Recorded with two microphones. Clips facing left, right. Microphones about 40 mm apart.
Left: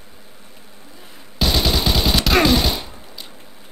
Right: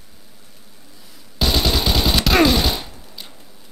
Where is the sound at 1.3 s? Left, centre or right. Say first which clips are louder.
Even; centre.